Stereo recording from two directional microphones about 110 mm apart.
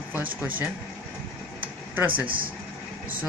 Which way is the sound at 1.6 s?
15° right (ahead or behind).